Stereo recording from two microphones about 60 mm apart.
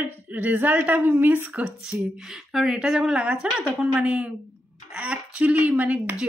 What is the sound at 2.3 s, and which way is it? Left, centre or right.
A woman's voice, centre.